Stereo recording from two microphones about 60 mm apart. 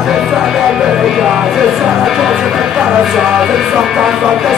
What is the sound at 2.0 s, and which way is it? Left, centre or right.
Music, centre.